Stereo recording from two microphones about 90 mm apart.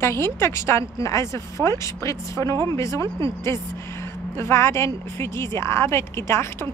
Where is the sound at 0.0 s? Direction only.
30° left (ahead or behind).